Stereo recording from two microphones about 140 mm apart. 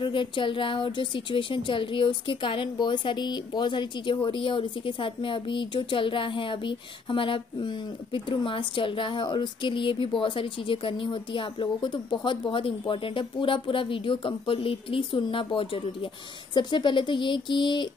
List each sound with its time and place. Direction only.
0.0 s a woman's voice: 35° left (ahead or behind)